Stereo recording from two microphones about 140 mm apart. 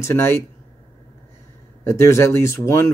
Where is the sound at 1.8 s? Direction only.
20° left (ahead or behind).